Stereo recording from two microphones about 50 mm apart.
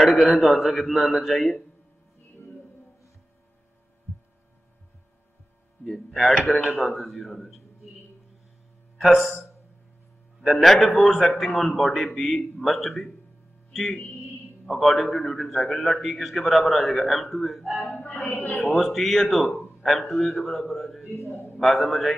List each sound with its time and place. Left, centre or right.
0.0 s a man's voice: centre
5.9 s a man's voice: centre
9.0 s a man's voice: centre
18.2 s speech: left
18.6 s a man's voice: centre
21.1 s a man's voice: left
21.5 s a man's voice: centre